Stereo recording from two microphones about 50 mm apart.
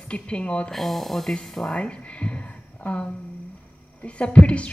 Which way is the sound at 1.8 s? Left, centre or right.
Left.